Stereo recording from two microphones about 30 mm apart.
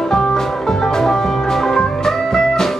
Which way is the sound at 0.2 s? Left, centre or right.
Centre.